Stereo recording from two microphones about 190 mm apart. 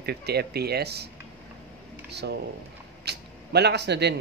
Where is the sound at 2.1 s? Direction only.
60° right (ahead or behind).